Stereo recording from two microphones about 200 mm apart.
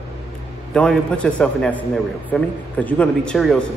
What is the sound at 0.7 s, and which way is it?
A man's voice, 5° left (ahead or behind).